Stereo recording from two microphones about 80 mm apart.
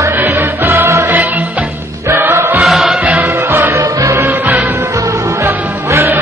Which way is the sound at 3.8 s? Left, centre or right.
Right.